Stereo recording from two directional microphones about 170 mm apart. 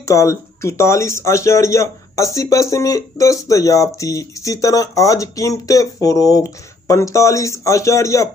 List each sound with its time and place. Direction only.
0.1 s speech: 20° left (ahead or behind)